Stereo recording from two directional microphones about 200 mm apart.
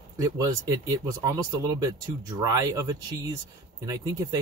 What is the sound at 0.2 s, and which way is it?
Speech, 15° right (ahead or behind).